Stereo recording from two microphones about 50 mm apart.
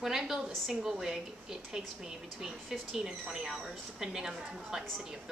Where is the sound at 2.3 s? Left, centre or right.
Centre.